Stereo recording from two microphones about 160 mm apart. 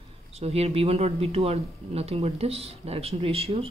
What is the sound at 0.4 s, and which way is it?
Speech, 40° right (ahead or behind).